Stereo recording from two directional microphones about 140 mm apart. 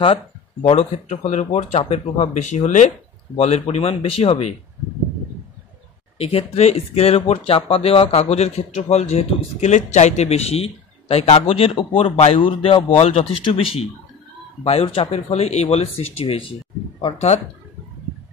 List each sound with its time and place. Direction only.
0.0 s speech: 40° left (ahead or behind)
6.1 s speech: 45° left (ahead or behind)